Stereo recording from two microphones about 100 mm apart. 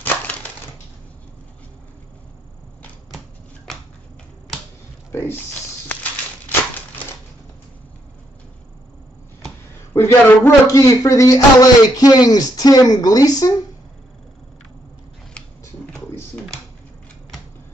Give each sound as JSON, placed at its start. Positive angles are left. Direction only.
{"t": 0.0, "sound": "crushing", "side_deg": 15}
{"t": 5.1, "sound": "speech", "side_deg": 20}
{"t": 9.9, "sound": "speech", "side_deg": 25}